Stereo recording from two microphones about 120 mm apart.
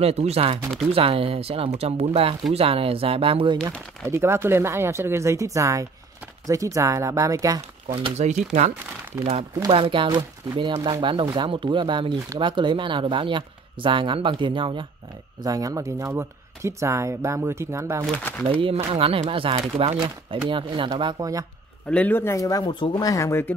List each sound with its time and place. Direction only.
0.0 s speech: 60° right (ahead or behind)
4.1 s speech: 20° right (ahead or behind)
8.2 s speech: 75° right (ahead or behind)
9.2 s speech: 55° right (ahead or behind)
9.7 s speech: 45° right (ahead or behind)
15.4 s speech: 30° right (ahead or behind)
18.5 s speech: 50° right (ahead or behind); by 21.3 s 35° right (ahead or behind)
21.8 s speech: 10° left (ahead or behind)